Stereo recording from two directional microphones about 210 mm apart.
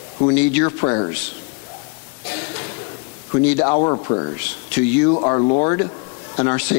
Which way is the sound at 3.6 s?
30° left (ahead or behind).